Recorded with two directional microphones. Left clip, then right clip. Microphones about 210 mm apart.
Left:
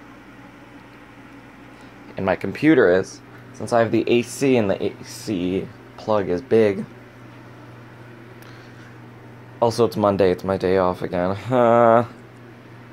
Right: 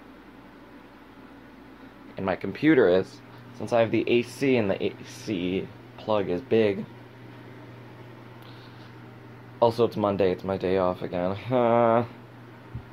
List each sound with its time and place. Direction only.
2.1 s speech: 20° left (ahead or behind)
9.6 s speech: 10° left (ahead or behind)